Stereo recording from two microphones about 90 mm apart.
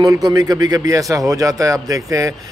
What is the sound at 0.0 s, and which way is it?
A man's voice, 45° right (ahead or behind).